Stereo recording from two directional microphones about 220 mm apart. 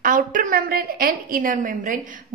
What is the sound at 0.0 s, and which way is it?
A woman's voice, 35° right (ahead or behind).